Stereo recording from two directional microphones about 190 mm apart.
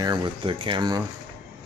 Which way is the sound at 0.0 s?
20° right (ahead or behind).